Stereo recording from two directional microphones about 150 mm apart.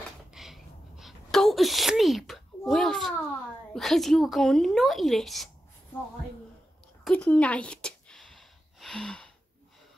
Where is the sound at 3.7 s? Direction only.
Centre (ahead or behind).